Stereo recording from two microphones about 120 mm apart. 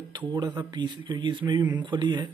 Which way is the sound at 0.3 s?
35° right (ahead or behind).